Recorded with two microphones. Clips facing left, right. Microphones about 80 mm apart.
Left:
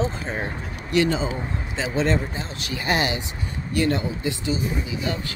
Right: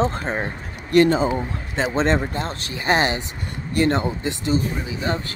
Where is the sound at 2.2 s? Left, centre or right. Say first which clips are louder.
Right 5 dB; right.